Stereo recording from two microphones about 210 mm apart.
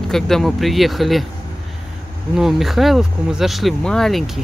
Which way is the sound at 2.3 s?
Centre (ahead or behind).